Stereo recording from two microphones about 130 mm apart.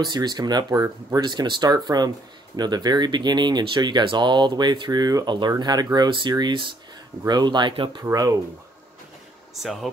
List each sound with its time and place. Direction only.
0.0 s speech: 35° right (ahead or behind)
8.0 s speech: 25° right (ahead or behind)
9.6 s speech: centre (ahead or behind)